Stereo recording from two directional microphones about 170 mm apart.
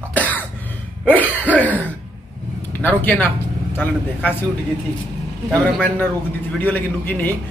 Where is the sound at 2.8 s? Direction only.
10° left (ahead or behind).